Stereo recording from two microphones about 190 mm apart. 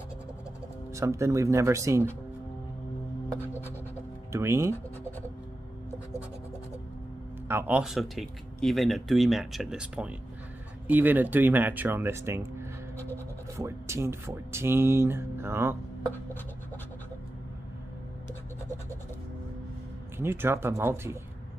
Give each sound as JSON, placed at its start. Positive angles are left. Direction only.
{"t": 0.9, "sound": "speech", "side_deg": -15}
{"t": 4.3, "sound": "writing", "side_deg": -15}
{"t": 7.4, "sound": "speech", "side_deg": -10}
{"t": 20.2, "sound": "speech", "side_deg": -10}